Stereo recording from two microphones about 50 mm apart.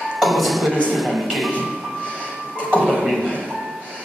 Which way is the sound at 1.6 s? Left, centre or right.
Left.